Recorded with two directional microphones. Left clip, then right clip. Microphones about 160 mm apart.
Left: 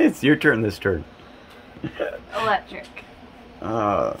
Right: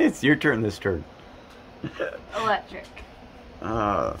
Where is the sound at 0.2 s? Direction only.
10° left (ahead or behind).